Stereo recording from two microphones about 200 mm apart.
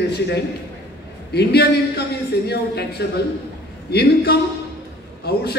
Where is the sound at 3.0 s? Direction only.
55° left (ahead or behind).